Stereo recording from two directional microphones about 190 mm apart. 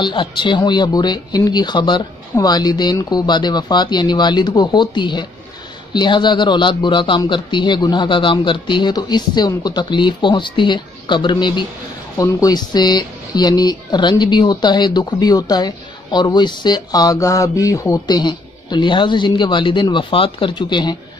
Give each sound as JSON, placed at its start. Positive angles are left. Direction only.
{"t": 0.0, "sound": "speech", "side_deg": 25}